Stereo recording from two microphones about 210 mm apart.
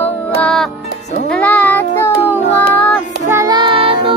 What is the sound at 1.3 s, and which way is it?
Child singing, 5° left (ahead or behind).